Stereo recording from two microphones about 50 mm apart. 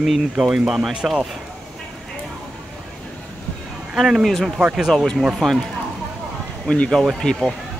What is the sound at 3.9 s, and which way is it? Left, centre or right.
Speech, centre.